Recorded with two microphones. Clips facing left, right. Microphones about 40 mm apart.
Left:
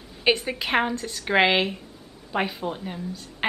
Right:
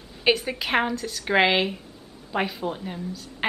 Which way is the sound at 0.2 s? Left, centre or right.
Centre.